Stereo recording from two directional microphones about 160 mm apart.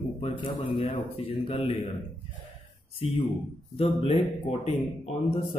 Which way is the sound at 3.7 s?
35° left (ahead or behind).